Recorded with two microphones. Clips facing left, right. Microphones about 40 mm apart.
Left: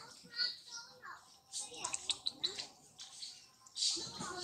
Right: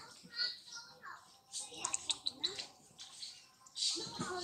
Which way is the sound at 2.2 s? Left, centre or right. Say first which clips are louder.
Even; centre.